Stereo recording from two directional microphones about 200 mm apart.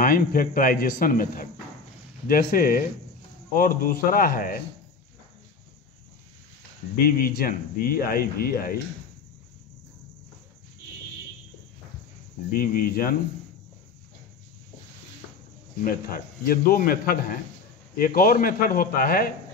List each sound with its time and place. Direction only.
0.0 s speech: 45° left (ahead or behind)
7.0 s speech: 45° left (ahead or behind)
12.5 s speech: 45° left (ahead or behind)
15.8 s speech: 45° left (ahead or behind)